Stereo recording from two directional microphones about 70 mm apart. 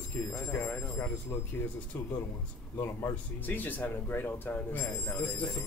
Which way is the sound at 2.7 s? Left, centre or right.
Left.